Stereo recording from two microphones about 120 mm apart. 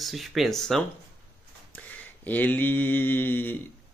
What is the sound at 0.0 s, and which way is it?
Speech, centre (ahead or behind).